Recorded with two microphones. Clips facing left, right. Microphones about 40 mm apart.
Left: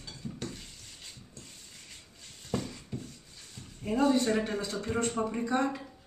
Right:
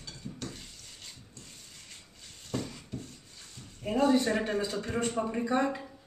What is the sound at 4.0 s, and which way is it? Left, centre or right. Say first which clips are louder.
Speech: right 1 dB; centre.